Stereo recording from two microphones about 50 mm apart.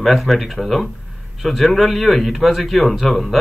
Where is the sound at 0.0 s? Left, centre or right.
Centre.